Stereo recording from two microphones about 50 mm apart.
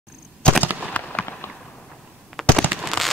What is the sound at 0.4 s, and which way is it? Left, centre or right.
Fireworks, left.